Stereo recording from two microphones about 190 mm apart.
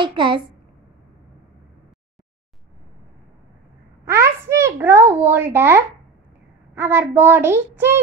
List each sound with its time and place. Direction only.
0.0 s a child's voice: 25° right (ahead or behind)
4.0 s a child's voice: 15° right (ahead or behind)